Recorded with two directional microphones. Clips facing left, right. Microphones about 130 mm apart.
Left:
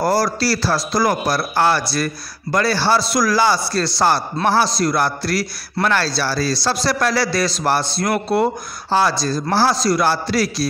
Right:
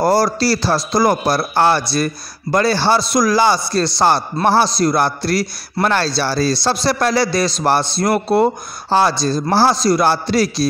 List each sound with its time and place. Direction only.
0.0 s a man's voice: 25° right (ahead or behind)